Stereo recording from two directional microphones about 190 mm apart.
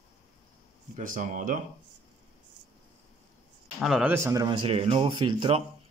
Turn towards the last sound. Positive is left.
turn(degrees=-25)  # may be behind; listen again after turning